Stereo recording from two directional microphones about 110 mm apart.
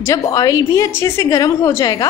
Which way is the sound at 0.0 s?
30° left (ahead or behind).